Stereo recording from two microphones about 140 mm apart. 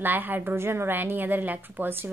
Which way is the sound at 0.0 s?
15° right (ahead or behind).